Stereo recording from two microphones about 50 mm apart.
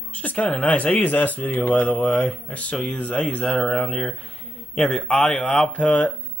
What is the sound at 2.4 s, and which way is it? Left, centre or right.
Speech, left.